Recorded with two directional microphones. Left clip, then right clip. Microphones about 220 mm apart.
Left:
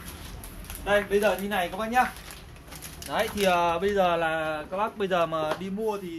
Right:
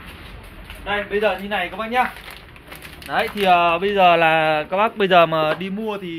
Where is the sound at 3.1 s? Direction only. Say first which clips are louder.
Right 8 dB; 15° right (ahead or behind).